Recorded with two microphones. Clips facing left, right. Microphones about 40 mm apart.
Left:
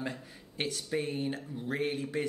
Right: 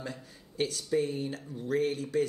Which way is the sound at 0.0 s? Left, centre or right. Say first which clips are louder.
Left 2 dB; left.